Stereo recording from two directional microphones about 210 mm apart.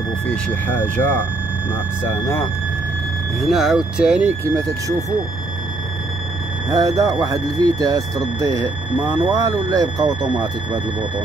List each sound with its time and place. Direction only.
0.3 s speech: 5° left (ahead or behind)
3.3 s speech: centre (ahead or behind)
6.7 s speech: 15° right (ahead or behind)